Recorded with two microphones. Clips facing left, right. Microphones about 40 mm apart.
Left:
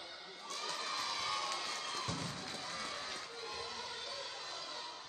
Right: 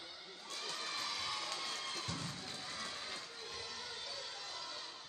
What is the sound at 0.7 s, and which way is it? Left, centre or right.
Crowd, left.